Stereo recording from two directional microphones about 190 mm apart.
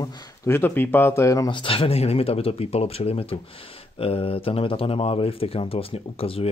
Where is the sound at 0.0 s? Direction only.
10° left (ahead or behind).